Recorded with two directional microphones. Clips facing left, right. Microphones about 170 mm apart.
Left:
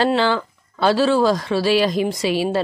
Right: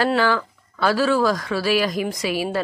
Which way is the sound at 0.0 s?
25° left (ahead or behind).